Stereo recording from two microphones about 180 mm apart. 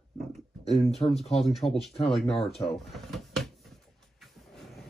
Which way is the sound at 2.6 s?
Centre (ahead or behind).